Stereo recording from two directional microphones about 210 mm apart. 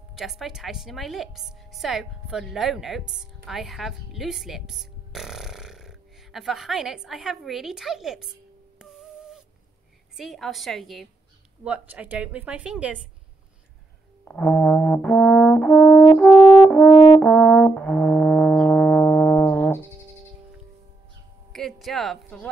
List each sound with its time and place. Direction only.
0.1 s a woman's voice: centre (ahead or behind)
10.1 s a woman's voice: centre (ahead or behind)
14.2 s brass instrument: 5° left (ahead or behind)
16.3 s french horn: 20° left (ahead or behind)
17.2 s brass instrument: 5° left (ahead or behind)
21.5 s a sound: centre (ahead or behind)